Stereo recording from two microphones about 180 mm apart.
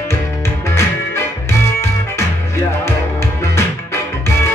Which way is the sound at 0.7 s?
15° left (ahead or behind).